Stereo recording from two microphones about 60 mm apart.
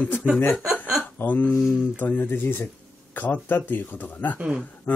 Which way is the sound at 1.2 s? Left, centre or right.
Left.